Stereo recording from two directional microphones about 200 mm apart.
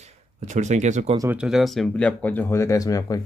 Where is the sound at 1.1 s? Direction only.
15° right (ahead or behind).